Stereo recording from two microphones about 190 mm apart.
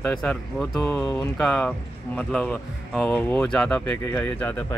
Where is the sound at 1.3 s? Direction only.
5° left (ahead or behind).